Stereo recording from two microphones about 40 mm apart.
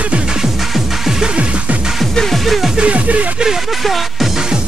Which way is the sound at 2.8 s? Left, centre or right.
Right.